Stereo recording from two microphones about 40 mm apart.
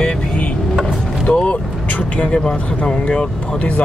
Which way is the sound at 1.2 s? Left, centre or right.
Left.